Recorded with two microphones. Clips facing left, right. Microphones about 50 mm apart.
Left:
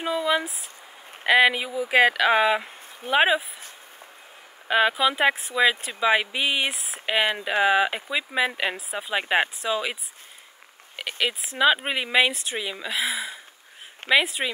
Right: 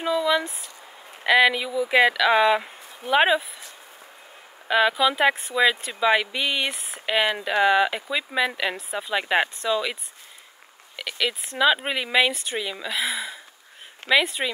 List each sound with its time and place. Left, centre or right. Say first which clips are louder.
0.0 s speech: right 2 dB; centre
3.1 s speech: right 1 dB; centre
4.6 s speech: right 1 dB; centre
11.0 s a sound: even; left
11.5 s speech: even; centre